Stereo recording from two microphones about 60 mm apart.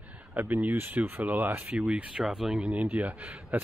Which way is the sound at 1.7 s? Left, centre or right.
Right.